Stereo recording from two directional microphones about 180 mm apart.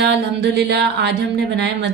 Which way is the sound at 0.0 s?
70° right (ahead or behind).